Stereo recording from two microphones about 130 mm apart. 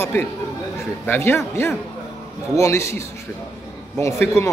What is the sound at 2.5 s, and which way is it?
Speech, 25° left (ahead or behind).